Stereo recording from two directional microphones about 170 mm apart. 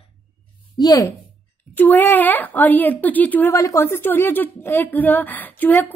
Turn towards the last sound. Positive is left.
turn(degrees=10)  # may be behind; listen again after turning